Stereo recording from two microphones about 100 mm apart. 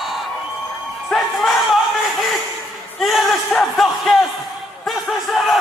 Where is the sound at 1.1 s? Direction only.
Centre (ahead or behind).